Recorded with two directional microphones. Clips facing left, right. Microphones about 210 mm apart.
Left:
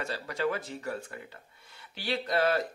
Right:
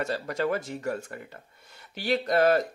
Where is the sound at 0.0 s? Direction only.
45° right (ahead or behind).